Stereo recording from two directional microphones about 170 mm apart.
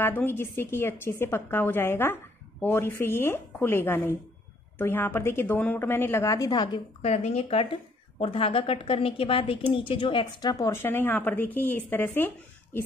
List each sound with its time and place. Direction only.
0.0 s speech: 10° left (ahead or behind)
7.0 s a woman's voice: 40° left (ahead or behind); by 12.3 s 10° left (ahead or behind)